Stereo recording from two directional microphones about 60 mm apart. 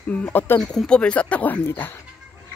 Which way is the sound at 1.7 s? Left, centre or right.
Left.